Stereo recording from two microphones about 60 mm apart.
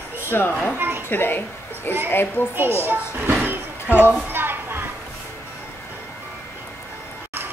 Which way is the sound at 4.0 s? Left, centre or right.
Right.